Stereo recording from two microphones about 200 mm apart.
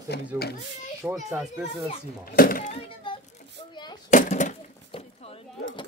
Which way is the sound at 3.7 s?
20° left (ahead or behind).